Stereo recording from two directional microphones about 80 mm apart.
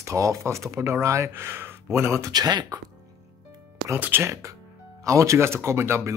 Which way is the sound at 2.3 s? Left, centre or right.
Right.